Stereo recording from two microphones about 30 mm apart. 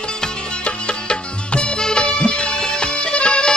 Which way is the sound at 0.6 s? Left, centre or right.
Left.